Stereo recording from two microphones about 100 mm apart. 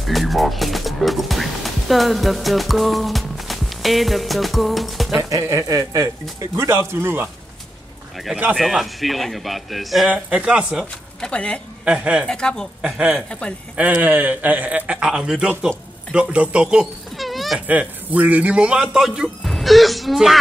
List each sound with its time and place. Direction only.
0.0 s speech: centre (ahead or behind)
5.3 s speech: 35° right (ahead or behind)
8.2 s speech: centre (ahead or behind)
10.1 s a man's voice: 10° right (ahead or behind)
11.1 s speech: 10° left (ahead or behind)
11.8 s a man's voice: 10° right (ahead or behind)
12.3 s speech: 5° left (ahead or behind)
12.8 s a man's voice: 10° right (ahead or behind)
13.3 s speech: 10° left (ahead or behind)
13.7 s a man's voice: 15° right (ahead or behind)
17.6 s speech: 15° right (ahead or behind)